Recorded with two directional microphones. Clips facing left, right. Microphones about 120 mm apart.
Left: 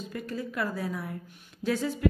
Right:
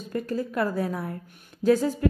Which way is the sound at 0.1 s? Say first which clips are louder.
Right 9 dB; 45° right (ahead or behind).